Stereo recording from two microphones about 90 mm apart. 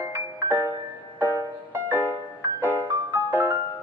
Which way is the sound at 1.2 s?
20° right (ahead or behind).